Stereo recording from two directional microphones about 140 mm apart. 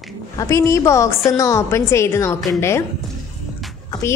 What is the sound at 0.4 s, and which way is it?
A woman's voice, 20° left (ahead or behind).